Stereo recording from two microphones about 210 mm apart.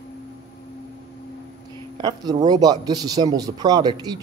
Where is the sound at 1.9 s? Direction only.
20° right (ahead or behind).